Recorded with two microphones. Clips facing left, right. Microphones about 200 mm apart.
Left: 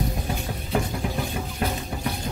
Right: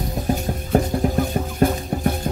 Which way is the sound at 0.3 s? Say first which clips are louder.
Right 7 dB; 45° right (ahead or behind).